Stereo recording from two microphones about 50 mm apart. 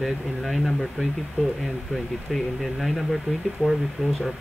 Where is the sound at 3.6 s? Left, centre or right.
Left.